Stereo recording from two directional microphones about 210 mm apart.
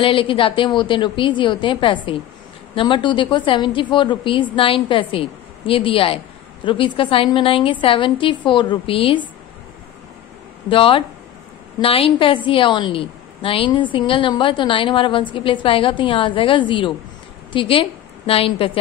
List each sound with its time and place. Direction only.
0.0 s a woman's voice: 25° left (ahead or behind)
10.7 s a woman's voice: 25° left (ahead or behind)